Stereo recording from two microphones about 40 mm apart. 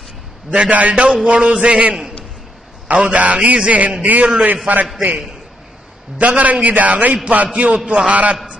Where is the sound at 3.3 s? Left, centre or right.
Right.